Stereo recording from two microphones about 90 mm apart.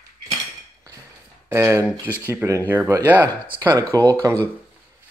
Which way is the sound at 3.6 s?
50° right (ahead or behind).